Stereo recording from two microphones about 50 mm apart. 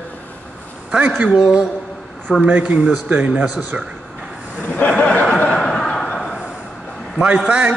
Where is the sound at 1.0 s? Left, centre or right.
Right.